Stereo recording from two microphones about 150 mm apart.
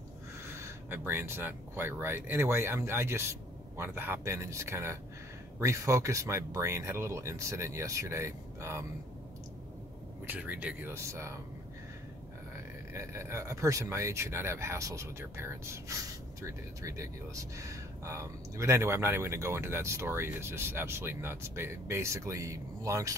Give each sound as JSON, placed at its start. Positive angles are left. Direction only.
{"t": 0.6, "sound": "speech", "side_deg": -15}
{"t": 10.2, "sound": "speech", "side_deg": -10}
{"t": 12.9, "sound": "speech", "side_deg": -20}